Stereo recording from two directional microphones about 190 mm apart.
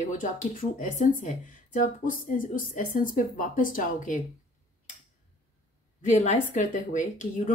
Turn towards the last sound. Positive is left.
turn(degrees=40)  # may be behind; listen again after turning